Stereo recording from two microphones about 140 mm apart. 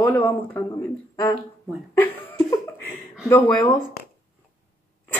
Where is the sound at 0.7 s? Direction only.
25° left (ahead or behind).